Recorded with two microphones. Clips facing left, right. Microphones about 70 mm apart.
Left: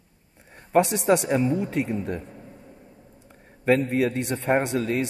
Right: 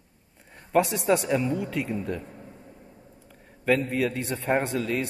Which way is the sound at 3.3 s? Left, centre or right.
Left.